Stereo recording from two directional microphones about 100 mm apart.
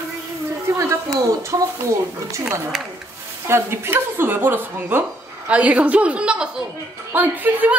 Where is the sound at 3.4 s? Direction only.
25° right (ahead or behind).